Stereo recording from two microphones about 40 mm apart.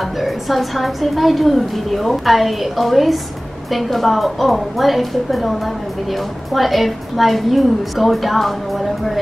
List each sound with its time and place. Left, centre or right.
0.2 s a woman's voice: centre